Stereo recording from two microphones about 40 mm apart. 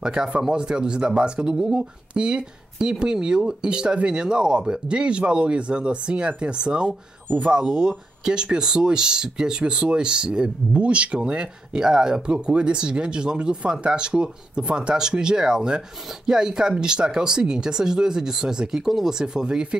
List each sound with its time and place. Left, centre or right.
0.0 s speech: centre